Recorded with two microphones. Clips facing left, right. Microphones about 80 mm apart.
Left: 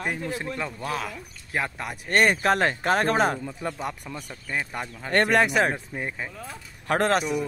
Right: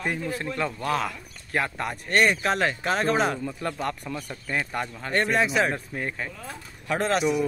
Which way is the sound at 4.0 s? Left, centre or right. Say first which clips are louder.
Right 3 dB; centre.